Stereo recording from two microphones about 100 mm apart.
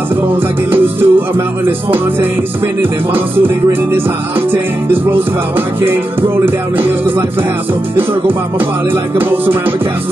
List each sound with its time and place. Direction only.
0.7 s music: 20° right (ahead or behind)
3.3 s music: 20° right (ahead or behind)
9.2 s music: 20° right (ahead or behind)